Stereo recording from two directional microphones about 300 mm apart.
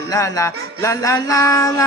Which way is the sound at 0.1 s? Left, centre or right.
Centre.